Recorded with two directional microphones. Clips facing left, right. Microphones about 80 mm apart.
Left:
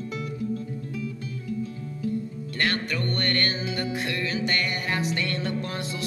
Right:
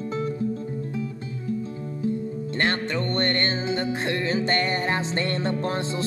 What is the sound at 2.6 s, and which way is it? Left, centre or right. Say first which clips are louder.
Music: right 2 dB; right.